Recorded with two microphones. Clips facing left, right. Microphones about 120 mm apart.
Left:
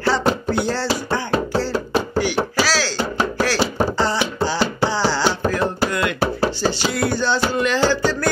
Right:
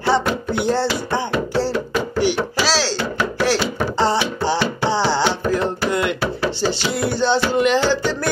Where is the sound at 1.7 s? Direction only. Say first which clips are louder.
Left 1 dB; 35° left (ahead or behind).